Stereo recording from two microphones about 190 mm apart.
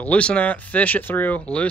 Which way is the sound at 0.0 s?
5° left (ahead or behind).